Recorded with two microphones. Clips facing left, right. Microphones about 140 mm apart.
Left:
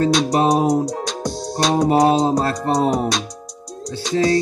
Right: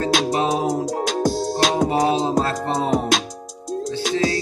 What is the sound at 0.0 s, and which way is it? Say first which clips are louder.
Music: left 4 dB; 40° left (ahead or behind).